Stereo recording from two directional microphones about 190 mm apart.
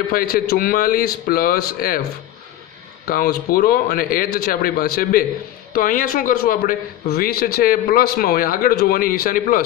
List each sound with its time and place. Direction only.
0.1 s a man's voice: 50° left (ahead or behind)
3.1 s a man's voice: 50° left (ahead or behind)